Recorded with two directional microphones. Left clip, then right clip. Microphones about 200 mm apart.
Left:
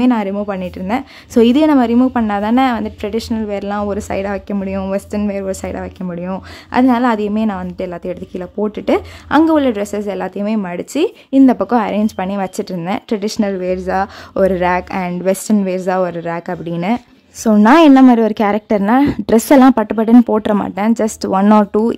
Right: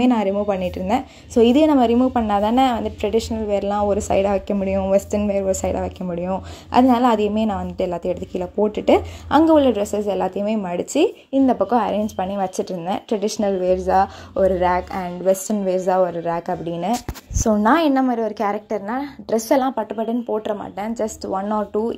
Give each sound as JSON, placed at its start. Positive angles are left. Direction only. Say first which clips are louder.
{"t": 0.0, "sound": "a woman's voice", "louder": "left 2 dB", "side_deg": 15}
{"t": 1.3, "sound": "a woman's voice", "louder": "left 3 dB", "side_deg": 20}
{"t": 11.4, "sound": "a woman's voice", "louder": "left 3 dB", "side_deg": 25}
{"t": 14.3, "sound": "a woman's voice", "louder": "left 4 dB", "side_deg": 30}
{"t": 17.7, "sound": "a woman's voice", "louder": "left 10 dB", "side_deg": 50}
{"t": 19.5, "sound": "speech", "louder": "left 10 dB", "side_deg": 35}